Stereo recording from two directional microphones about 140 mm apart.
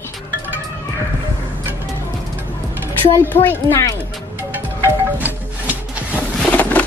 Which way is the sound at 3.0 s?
15° left (ahead or behind).